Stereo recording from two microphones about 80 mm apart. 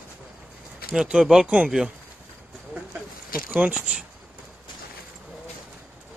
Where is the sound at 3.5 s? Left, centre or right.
Centre.